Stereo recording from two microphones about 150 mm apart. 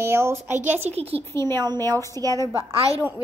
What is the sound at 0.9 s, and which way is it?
Speech, 40° right (ahead or behind).